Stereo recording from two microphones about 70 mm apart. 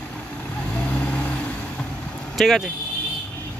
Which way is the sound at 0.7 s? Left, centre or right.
Centre.